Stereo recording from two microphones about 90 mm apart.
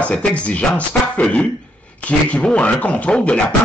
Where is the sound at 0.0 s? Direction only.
15° left (ahead or behind).